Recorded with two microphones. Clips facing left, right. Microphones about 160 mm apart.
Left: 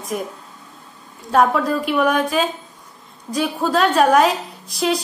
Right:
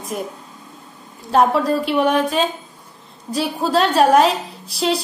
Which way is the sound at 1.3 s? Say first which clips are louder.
Right 1 dB; 30° right (ahead or behind).